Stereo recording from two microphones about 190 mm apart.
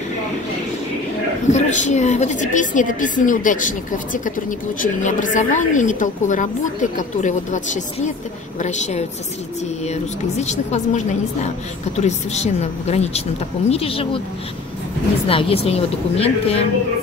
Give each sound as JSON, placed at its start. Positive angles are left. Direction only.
{"t": 1.5, "sound": "a woman's voice", "side_deg": 40}
{"t": 15.2, "sound": "a woman's voice", "side_deg": 30}